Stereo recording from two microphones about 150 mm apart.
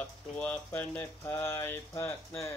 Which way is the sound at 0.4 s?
10° left (ahead or behind).